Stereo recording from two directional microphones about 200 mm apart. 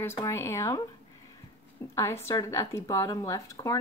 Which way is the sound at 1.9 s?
15° left (ahead or behind).